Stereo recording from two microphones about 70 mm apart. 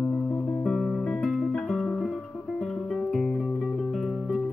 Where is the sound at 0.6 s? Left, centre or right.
Centre.